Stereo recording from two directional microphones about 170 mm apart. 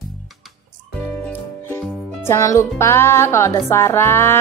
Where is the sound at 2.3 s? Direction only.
15° left (ahead or behind).